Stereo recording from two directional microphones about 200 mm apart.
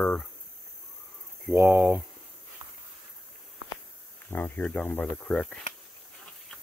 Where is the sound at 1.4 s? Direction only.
Centre (ahead or behind).